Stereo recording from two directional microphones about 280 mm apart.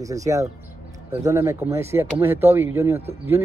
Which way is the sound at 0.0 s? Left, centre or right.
Centre.